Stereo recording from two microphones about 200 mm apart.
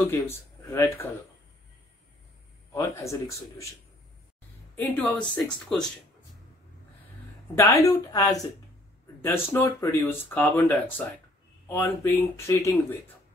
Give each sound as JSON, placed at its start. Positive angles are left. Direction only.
{"t": 0.1, "sound": "speech", "side_deg": 10}
{"t": 2.7, "sound": "speech", "side_deg": 15}
{"t": 4.7, "sound": "speech", "side_deg": 10}
{"t": 7.5, "sound": "speech", "side_deg": 15}
{"t": 11.7, "sound": "speech", "side_deg": 10}